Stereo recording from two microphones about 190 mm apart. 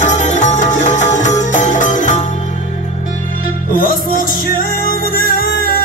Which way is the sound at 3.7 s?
45° left (ahead or behind).